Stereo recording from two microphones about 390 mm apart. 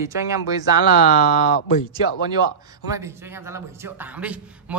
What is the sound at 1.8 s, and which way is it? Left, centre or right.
A man's voice, centre.